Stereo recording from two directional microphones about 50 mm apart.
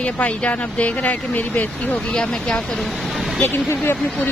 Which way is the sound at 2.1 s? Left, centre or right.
Left.